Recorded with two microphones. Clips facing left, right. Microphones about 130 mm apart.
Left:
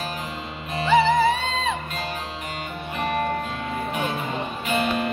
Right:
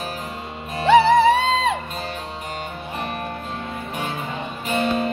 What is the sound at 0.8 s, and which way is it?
Music, 70° right (ahead or behind).